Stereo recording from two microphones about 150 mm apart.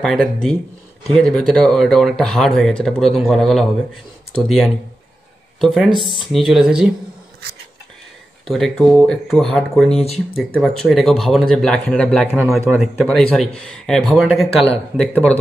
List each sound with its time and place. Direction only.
0.0 s a man's voice: 5° left (ahead or behind)
8.5 s a man's voice: centre (ahead or behind)